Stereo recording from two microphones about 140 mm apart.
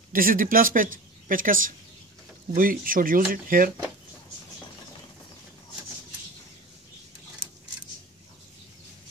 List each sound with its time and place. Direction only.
0.1 s speech: 85° right